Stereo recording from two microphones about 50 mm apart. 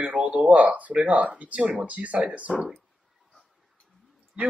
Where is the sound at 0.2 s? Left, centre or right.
Right.